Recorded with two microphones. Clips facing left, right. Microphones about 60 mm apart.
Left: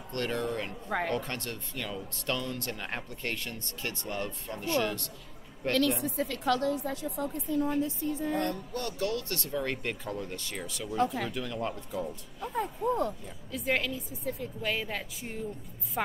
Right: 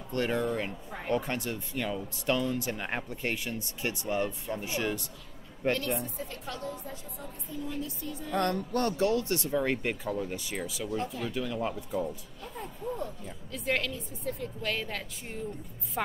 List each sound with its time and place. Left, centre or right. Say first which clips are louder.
0.1 s speech: right 3 dB; centre
0.8 s a woman's voice: left 6 dB; left
1.1 s speech: right 3 dB; centre
6.0 s a woman's voice: left 10 dB; left
7.2 s a woman's voice: left 13 dB; left
7.6 s speech: left 7 dB; left
8.3 s speech: right 2 dB; right
8.8 s a woman's voice: right 4 dB; right; by 12.1 s centre
13.5 s a woman's voice: left 1 dB; centre